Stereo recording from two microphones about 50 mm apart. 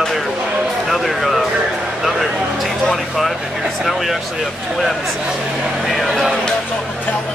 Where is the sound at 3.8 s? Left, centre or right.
Centre.